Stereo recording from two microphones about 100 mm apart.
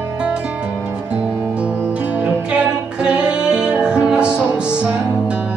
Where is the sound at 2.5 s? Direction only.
10° right (ahead or behind).